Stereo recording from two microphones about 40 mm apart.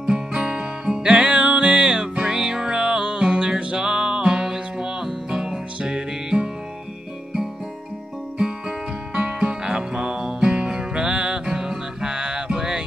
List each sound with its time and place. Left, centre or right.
0.0 s music: centre
3.7 s music: centre
8.4 s music: centre